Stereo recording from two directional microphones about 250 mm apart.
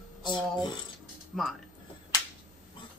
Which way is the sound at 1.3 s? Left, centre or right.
Centre.